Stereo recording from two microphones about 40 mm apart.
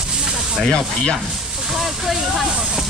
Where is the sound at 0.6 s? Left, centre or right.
Centre.